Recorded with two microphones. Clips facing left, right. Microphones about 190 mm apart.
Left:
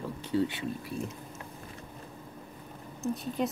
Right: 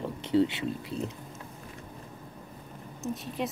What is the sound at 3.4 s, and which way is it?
Speech, centre (ahead or behind).